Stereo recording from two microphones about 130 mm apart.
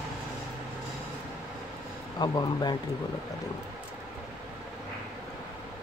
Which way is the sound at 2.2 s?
35° left (ahead or behind).